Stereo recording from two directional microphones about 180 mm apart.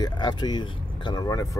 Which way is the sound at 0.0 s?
25° left (ahead or behind).